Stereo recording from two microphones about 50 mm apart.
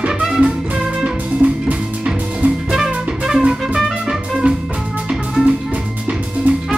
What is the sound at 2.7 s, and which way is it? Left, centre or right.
Music, centre.